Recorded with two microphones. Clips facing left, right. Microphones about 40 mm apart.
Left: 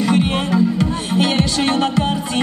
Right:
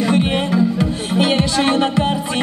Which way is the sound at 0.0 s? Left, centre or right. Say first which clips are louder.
Even; centre.